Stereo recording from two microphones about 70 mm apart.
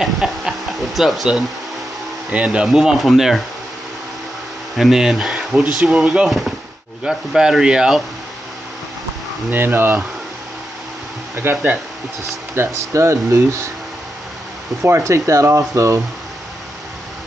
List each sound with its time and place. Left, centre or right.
0.0 s speech: centre
2.3 s speech: centre
4.7 s speech: centre
9.5 s speech: right
11.4 s speech: right
14.8 s speech: right